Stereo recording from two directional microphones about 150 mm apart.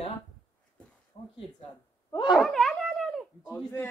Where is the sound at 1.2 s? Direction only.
35° left (ahead or behind).